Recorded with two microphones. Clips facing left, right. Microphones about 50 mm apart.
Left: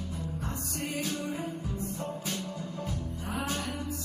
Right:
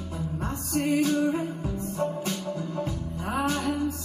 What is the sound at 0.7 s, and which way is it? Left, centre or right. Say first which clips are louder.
Music: right 12 dB; right.